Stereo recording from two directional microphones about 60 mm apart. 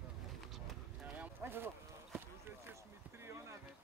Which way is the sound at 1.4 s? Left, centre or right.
Right.